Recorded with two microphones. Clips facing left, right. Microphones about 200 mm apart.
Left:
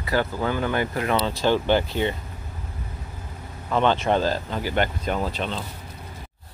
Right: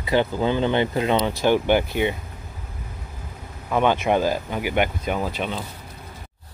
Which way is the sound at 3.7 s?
10° right (ahead or behind).